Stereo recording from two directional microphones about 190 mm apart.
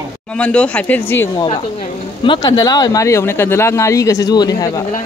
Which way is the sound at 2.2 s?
25° left (ahead or behind).